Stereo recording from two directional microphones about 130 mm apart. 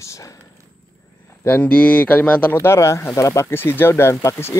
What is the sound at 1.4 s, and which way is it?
Speech, 15° left (ahead or behind).